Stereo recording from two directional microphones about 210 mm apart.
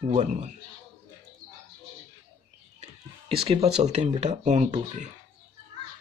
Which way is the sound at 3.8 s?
30° right (ahead or behind).